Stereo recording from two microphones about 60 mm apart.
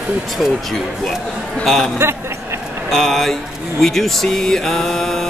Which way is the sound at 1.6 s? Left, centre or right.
Centre.